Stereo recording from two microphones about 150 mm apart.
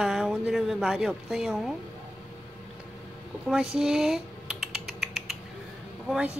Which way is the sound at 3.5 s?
5° right (ahead or behind).